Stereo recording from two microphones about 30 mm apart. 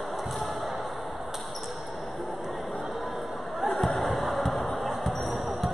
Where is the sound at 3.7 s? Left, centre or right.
Centre.